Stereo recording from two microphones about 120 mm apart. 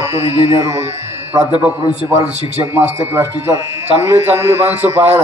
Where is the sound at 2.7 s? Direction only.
20° right (ahead or behind).